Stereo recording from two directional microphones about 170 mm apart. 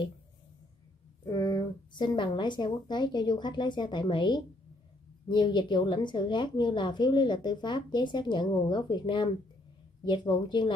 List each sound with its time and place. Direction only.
1.2 s a woman's voice: 20° left (ahead or behind)